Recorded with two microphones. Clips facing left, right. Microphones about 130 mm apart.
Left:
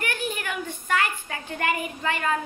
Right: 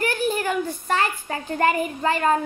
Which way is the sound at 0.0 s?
35° right (ahead or behind).